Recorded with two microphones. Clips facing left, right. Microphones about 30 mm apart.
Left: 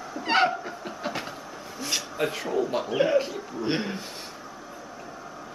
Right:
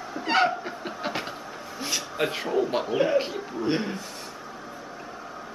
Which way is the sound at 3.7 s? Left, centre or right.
Centre.